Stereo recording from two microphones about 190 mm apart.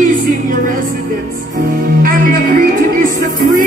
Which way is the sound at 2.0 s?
45° right (ahead or behind).